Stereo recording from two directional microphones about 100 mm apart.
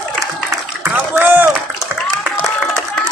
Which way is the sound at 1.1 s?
20° right (ahead or behind).